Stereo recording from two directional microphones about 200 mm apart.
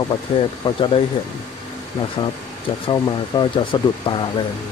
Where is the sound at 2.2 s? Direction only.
25° left (ahead or behind).